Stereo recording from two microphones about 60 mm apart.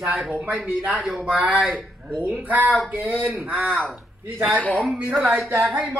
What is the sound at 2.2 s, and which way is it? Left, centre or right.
Speech, right.